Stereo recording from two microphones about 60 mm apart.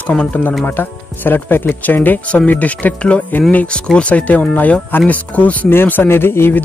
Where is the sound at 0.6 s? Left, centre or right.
Left.